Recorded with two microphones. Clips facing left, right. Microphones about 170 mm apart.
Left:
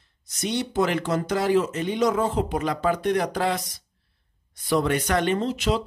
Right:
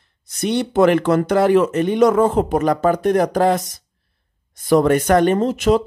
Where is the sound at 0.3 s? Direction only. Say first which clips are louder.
Right 7 dB; 60° right (ahead or behind).